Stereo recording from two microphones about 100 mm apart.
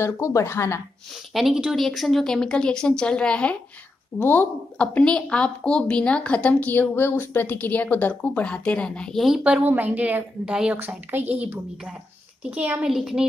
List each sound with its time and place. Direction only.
0.0 s speech: 30° left (ahead or behind)
1.3 s a woman's voice: 5° right (ahead or behind)
9.2 s a woman's voice: 5° right (ahead or behind)